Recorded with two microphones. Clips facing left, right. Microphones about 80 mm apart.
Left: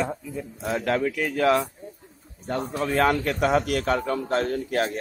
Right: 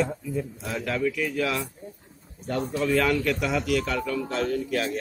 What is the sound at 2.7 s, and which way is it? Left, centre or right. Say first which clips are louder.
A man's voice: left 1 dB; left.